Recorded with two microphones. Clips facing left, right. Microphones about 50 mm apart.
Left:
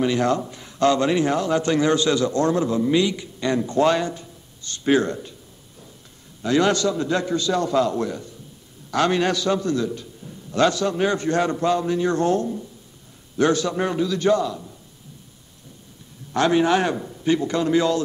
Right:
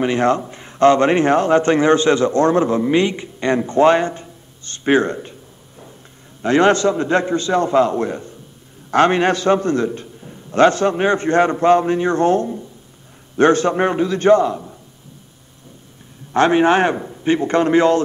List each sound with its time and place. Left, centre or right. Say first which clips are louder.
0.0 s a man's voice: right 4 dB; right
16.3 s a man's voice: right 5 dB; right